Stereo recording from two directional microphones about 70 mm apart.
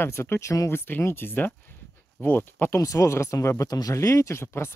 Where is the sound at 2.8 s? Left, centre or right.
Left.